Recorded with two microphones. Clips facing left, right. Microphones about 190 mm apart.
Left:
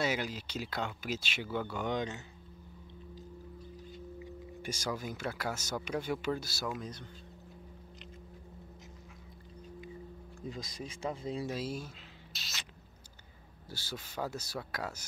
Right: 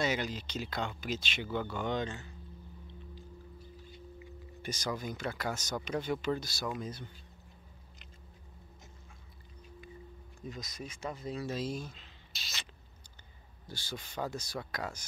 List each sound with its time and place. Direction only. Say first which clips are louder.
0.0 s speech: right 1 dB; 5° left (ahead or behind)
4.6 s speech: right 1 dB; 10° left (ahead or behind)
10.4 s speech: left 1 dB; 30° left (ahead or behind)
11.4 s speech: right 1 dB; 10° left (ahead or behind)
13.7 s speech: even; 5° left (ahead or behind)